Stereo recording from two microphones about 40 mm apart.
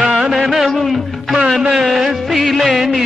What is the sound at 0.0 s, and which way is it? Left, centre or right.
Music, centre.